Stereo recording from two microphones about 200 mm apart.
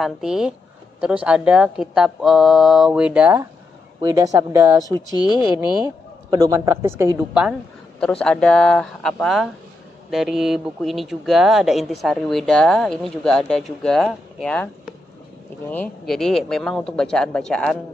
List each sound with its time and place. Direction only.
0.0 s speech: centre (ahead or behind)
4.0 s a woman's voice: 20° right (ahead or behind)
5.9 s a woman's voice: 15° right (ahead or behind)
8.0 s speech: 5° left (ahead or behind)
15.7 s speech: 5° left (ahead or behind)